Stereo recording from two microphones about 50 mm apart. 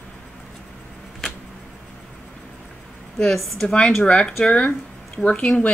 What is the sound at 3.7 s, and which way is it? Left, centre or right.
Speech, centre.